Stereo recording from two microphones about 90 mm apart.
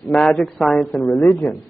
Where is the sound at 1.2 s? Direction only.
20° left (ahead or behind).